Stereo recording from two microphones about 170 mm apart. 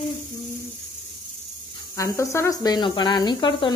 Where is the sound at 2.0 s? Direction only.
20° left (ahead or behind).